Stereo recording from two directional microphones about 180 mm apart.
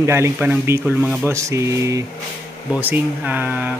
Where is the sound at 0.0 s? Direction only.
15° right (ahead or behind).